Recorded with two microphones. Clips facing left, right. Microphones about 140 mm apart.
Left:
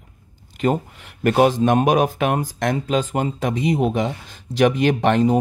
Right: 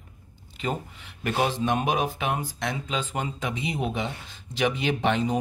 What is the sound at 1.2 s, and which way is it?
Speech, 55° left (ahead or behind).